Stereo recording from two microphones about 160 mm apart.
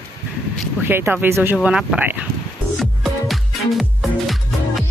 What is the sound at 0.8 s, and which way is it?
Speech, 15° right (ahead or behind).